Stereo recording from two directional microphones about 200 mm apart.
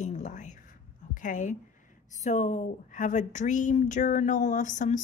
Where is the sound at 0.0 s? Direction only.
35° left (ahead or behind).